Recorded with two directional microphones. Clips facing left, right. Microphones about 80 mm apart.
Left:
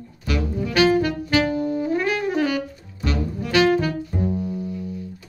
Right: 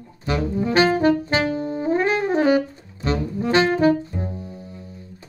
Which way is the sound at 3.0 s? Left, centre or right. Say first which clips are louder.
Right 3 dB; right.